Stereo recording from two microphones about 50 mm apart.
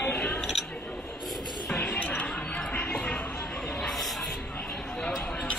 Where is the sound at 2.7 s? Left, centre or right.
Left.